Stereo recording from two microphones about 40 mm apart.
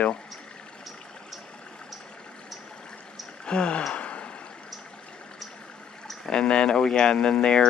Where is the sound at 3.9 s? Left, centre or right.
Left.